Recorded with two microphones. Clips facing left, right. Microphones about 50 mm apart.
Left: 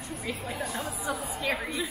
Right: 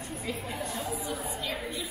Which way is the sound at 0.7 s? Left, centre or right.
Left.